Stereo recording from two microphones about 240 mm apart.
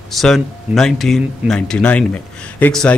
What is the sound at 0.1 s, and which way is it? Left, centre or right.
Speech, centre.